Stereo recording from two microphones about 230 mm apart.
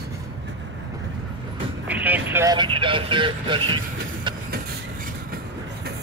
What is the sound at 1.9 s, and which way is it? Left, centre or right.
Speech, centre.